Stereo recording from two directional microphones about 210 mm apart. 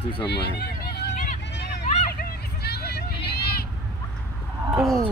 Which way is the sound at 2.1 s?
50° left (ahead or behind).